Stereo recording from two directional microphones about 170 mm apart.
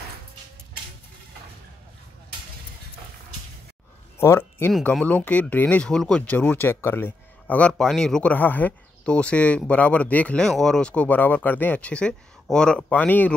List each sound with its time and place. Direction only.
4.2 s speech: 15° left (ahead or behind)